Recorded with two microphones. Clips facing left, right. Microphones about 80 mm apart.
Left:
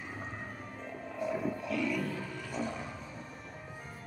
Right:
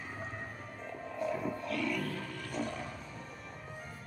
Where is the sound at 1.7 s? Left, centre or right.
Right.